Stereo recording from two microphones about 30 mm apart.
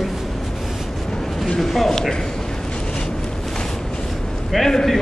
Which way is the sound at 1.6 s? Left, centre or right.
Centre.